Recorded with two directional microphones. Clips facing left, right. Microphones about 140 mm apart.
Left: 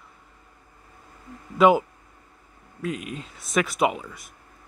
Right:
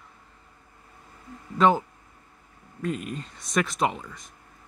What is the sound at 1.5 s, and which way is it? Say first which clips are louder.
Speech: left 3 dB; 10° left (ahead or behind).